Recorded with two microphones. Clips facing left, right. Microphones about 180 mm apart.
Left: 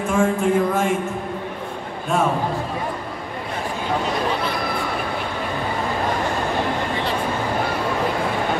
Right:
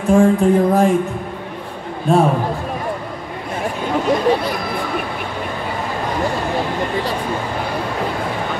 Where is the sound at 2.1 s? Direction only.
35° right (ahead or behind).